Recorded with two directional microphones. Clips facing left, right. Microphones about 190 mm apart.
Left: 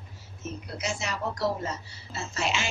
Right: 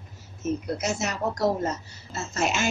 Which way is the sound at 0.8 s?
45° right (ahead or behind).